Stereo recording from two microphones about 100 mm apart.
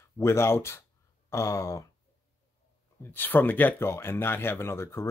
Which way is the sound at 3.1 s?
20° left (ahead or behind).